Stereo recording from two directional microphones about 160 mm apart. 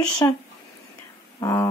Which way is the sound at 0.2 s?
20° left (ahead or behind).